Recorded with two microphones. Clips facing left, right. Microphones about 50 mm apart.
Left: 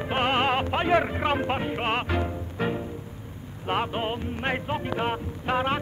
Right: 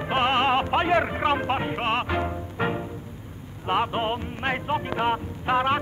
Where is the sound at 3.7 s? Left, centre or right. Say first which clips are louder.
Right 3 dB; centre.